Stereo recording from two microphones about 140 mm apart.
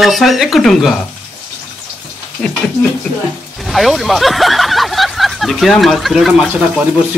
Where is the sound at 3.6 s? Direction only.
Centre (ahead or behind).